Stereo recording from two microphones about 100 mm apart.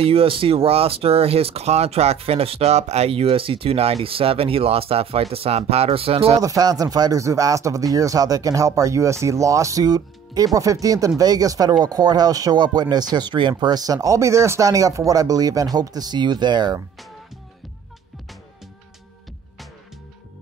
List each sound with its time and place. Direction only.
0.0 s speech: 65° right (ahead or behind)
6.4 s speech: 40° right (ahead or behind)